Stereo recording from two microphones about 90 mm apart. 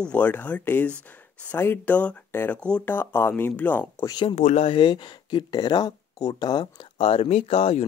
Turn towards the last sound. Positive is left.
turn(degrees=90)